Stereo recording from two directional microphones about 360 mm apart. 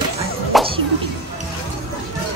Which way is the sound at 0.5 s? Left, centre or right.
Centre.